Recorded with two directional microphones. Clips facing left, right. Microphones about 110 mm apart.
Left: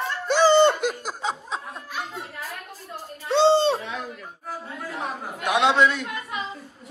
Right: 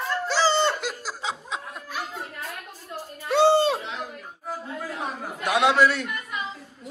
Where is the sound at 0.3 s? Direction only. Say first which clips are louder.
Left 7 dB; 55° left (ahead or behind).